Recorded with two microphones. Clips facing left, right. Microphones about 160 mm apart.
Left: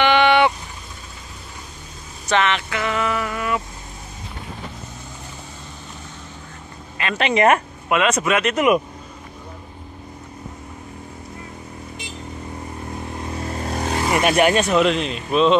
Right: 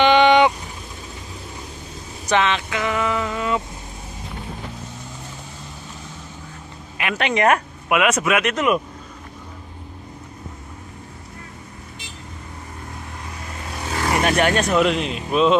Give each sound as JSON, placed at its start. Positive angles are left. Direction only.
{"t": 0.0, "sound": "vehicle", "side_deg": -15}
{"t": 2.2, "sound": "speech", "side_deg": -15}
{"t": 7.2, "sound": "speech", "side_deg": 0}
{"t": 13.5, "sound": "vehicle", "side_deg": 40}
{"t": 14.0, "sound": "vehicle", "side_deg": 15}
{"t": 14.5, "sound": "speech", "side_deg": 0}